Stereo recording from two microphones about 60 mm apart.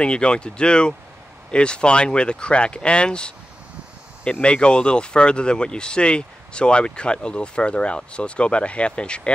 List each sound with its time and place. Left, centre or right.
0.0 s speech: centre